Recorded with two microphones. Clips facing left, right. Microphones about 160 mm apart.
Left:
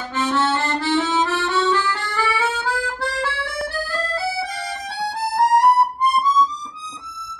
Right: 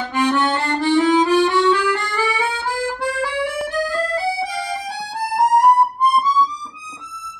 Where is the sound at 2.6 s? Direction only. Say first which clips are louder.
Right 2 dB; 15° right (ahead or behind).